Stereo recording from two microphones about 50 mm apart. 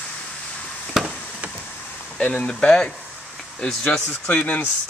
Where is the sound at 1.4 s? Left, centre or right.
Right.